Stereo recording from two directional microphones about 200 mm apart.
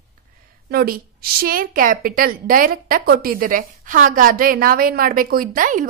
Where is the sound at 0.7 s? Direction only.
50° right (ahead or behind).